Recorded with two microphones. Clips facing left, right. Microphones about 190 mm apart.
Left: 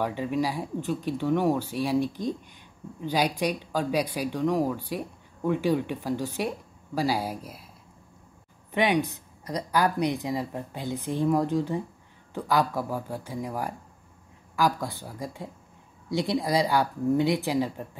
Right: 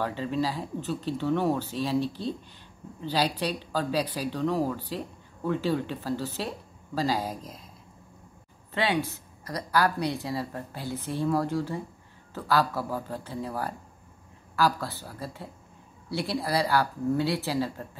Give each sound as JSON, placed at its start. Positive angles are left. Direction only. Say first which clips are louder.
{"t": 0.0, "sound": "speech", "louder": "left 1 dB", "side_deg": 15}
{"t": 8.7, "sound": "speech", "louder": "left 3 dB", "side_deg": 15}